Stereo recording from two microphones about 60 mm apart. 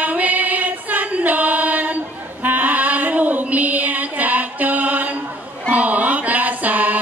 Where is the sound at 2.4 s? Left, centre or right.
Right.